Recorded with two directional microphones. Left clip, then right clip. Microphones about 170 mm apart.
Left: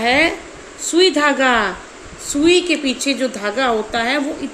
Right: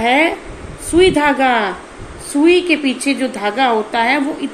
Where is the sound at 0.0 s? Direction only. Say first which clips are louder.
Right 2 dB; 25° left (ahead or behind).